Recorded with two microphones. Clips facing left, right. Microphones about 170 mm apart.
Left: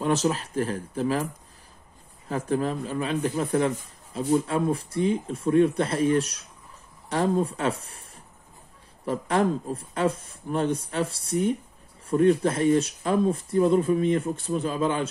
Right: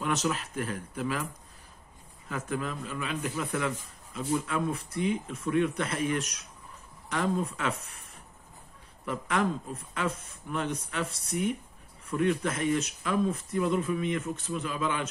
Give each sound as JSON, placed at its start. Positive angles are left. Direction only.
{"t": 0.0, "sound": "speech", "side_deg": 30}
{"t": 9.0, "sound": "speech", "side_deg": 35}